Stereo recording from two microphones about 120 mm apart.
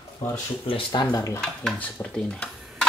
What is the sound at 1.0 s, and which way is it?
Speech, 25° left (ahead or behind).